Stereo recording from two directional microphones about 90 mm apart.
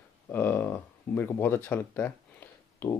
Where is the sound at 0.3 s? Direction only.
20° left (ahead or behind).